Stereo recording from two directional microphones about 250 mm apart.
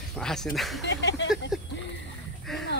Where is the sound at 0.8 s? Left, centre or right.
Left.